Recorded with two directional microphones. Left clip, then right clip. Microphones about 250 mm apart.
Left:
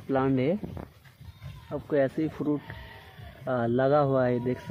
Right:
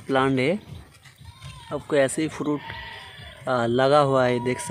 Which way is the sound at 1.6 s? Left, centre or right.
Centre.